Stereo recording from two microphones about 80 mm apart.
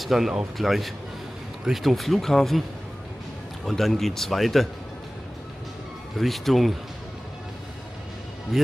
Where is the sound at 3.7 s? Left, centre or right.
Centre.